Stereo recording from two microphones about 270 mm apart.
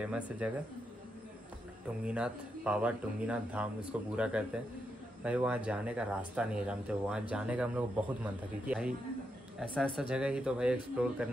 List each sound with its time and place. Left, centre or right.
0.0 s speech: centre
2.0 s speech: centre